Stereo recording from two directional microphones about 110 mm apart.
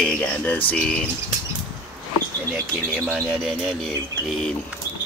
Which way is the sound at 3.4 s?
5° left (ahead or behind).